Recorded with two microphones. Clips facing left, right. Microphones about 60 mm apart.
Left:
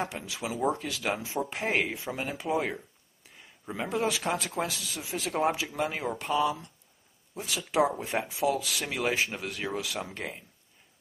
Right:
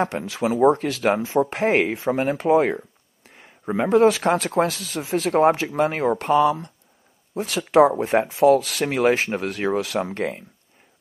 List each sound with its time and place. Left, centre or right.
0.0 s speech: right